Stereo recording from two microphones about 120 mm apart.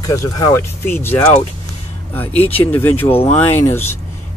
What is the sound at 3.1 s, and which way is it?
Speech, 55° left (ahead or behind).